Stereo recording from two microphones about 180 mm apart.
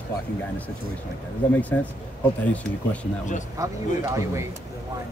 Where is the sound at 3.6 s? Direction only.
15° right (ahead or behind).